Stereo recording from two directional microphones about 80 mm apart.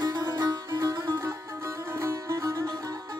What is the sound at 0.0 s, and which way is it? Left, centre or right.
Music, right.